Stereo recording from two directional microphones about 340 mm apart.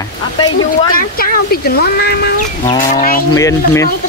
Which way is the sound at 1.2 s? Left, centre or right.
Left.